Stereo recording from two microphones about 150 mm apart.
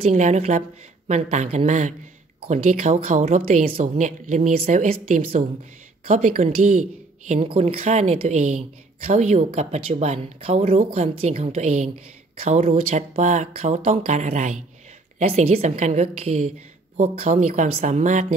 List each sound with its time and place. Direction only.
0.0 s a woman's voice: 50° right (ahead or behind)
7.3 s a woman's voice: 40° right (ahead or behind); by 18.2 s 55° right (ahead or behind)